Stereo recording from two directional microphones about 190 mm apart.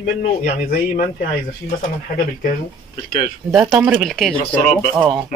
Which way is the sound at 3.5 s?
Centre (ahead or behind).